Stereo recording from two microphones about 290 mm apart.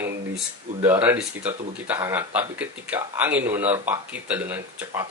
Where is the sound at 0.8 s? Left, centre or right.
Centre.